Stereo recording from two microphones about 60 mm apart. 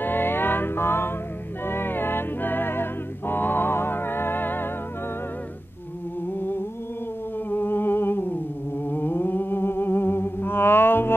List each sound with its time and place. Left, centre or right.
0.0 s music: left
7.4 s humming: left